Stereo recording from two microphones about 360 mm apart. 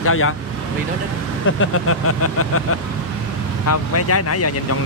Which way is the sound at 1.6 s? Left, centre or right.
Left.